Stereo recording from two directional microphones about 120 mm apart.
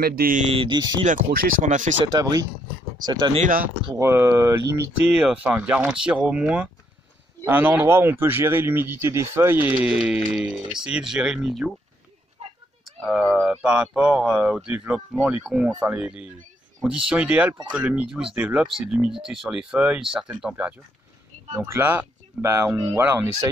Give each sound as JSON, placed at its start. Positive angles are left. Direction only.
{"t": 0.5, "sound": "speech", "side_deg": -45}
{"t": 1.0, "sound": "speech", "side_deg": -90}
{"t": 2.1, "sound": "speech", "side_deg": -35}
{"t": 4.0, "sound": "speech", "side_deg": -20}
{"t": 5.1, "sound": "speech", "side_deg": -5}
{"t": 12.4, "sound": "a sound", "side_deg": -55}
{"t": 12.8, "sound": "speech", "side_deg": 0}
{"t": 21.5, "sound": "speech", "side_deg": -20}